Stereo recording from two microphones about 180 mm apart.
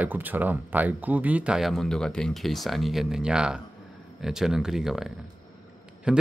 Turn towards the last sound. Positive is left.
turn(degrees=-5)  # may be behind; listen again after turning